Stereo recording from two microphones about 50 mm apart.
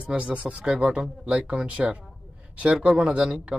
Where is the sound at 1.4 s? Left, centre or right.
Right.